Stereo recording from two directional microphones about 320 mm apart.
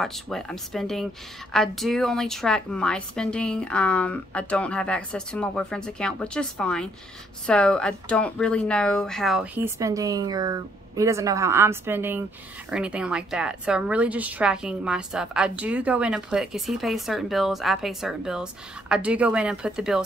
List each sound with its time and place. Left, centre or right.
0.0 s a woman's voice: centre